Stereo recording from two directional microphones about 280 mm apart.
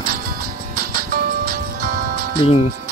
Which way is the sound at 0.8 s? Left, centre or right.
Right.